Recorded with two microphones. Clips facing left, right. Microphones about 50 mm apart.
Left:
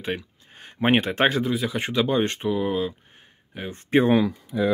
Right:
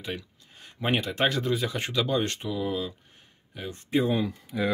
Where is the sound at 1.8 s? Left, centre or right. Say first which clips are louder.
Left 4 dB; left.